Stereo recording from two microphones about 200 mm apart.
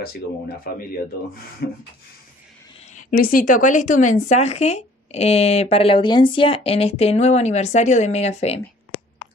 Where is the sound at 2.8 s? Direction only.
40° left (ahead or behind).